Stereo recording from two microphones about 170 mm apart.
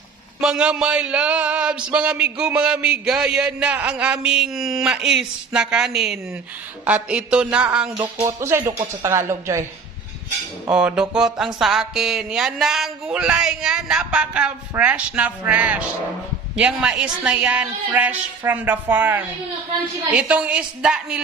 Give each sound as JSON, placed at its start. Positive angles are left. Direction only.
{"t": 0.4, "sound": "a man's voice", "side_deg": -5}
{"t": 8.2, "sound": "a woman's voice", "side_deg": -15}
{"t": 10.7, "sound": "a man's voice", "side_deg": -5}